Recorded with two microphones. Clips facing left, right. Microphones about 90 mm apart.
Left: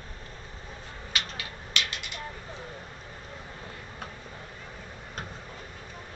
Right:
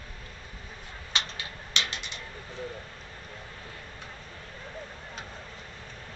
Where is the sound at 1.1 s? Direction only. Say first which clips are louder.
Right 1 dB; 25° right (ahead or behind).